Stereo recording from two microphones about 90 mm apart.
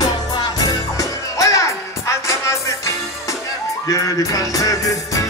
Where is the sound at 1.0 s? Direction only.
35° left (ahead or behind).